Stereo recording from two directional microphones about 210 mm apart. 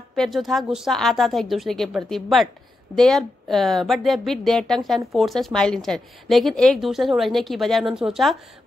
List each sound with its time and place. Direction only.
0.1 s speech: centre (ahead or behind)